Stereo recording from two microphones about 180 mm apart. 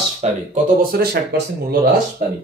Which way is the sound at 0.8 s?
60° right (ahead or behind).